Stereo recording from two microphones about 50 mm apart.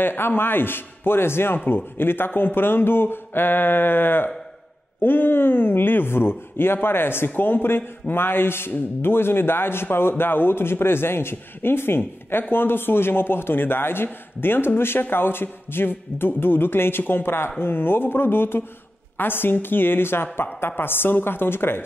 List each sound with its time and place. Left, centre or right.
0.0 s a man's voice: left